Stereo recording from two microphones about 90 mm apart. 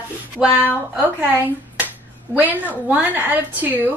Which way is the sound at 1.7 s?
20° right (ahead or behind).